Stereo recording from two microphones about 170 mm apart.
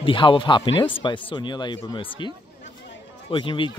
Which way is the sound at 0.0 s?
30° left (ahead or behind).